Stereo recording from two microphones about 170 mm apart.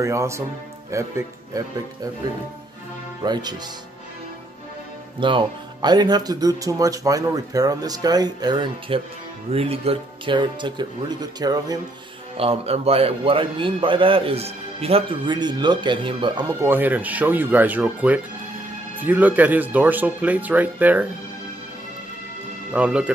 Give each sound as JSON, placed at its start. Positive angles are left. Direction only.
{"t": 0.0, "sound": "speech", "side_deg": -15}
{"t": 5.2, "sound": "speech", "side_deg": -30}
{"t": 12.4, "sound": "a man's voice", "side_deg": -35}
{"t": 16.6, "sound": "speech", "side_deg": -10}
{"t": 22.7, "sound": "speech", "side_deg": -5}